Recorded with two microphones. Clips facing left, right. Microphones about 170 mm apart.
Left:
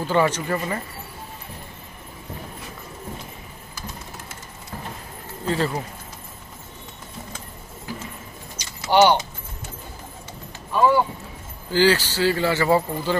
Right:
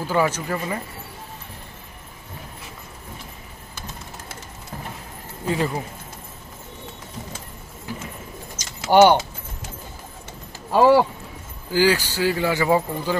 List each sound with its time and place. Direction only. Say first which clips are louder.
0.0 s speech: left 1 dB; 5° right (ahead or behind)
5.4 s speech: even; 15° right (ahead or behind)
8.5 s keys jangling: right 3 dB; 50° right (ahead or behind)
10.7 s speech: right 4 dB; 90° right
11.7 s speech: left 1 dB; 10° right (ahead or behind)